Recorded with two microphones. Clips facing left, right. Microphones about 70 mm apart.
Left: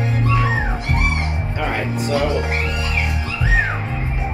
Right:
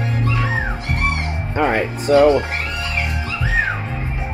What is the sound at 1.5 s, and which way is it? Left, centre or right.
Speech, right.